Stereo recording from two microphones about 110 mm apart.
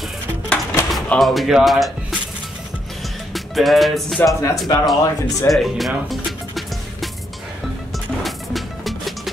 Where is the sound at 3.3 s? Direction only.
Centre (ahead or behind).